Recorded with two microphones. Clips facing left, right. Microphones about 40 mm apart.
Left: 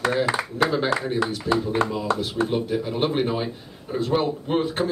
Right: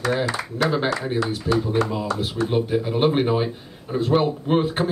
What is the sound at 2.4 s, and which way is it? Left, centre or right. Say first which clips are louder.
Speech: right 3 dB; centre.